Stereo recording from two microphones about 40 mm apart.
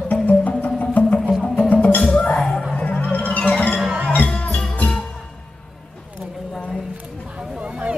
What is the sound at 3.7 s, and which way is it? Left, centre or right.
Music, right.